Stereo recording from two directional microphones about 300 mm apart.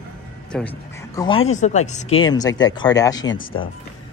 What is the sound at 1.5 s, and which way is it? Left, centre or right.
Speech, left.